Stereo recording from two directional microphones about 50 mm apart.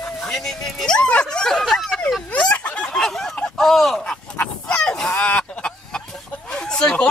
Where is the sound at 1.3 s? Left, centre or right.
Centre.